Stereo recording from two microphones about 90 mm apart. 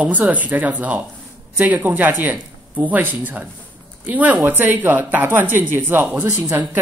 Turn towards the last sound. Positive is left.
turn(degrees=-25)  # may be behind; listen again after turning